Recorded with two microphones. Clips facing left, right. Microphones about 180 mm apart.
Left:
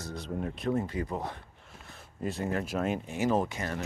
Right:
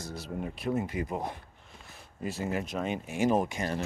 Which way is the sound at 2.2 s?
5° right (ahead or behind).